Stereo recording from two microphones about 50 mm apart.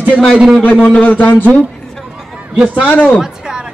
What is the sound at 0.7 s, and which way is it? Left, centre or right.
Speech, left.